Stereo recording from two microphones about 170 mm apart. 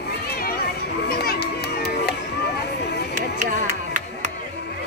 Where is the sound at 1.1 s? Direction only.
65° left (ahead or behind).